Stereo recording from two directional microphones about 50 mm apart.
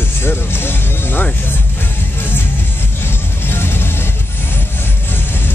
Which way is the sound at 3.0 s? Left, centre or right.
Left.